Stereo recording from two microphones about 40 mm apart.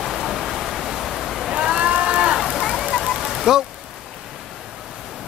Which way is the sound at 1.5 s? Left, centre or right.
Right.